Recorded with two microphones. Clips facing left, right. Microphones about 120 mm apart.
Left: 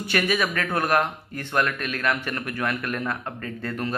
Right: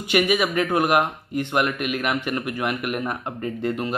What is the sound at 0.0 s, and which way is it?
Speech, 15° right (ahead or behind).